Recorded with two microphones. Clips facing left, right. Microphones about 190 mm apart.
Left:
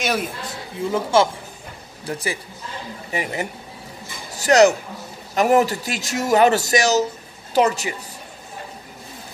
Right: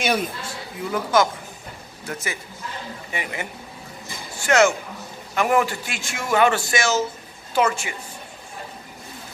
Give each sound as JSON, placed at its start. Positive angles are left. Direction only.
{"t": 0.0, "sound": "speech", "side_deg": 0}
{"t": 0.4, "sound": "a man's voice", "side_deg": 25}